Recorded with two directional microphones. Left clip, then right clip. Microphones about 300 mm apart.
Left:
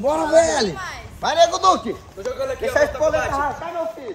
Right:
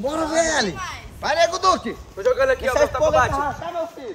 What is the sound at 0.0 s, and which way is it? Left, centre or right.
Speech, centre.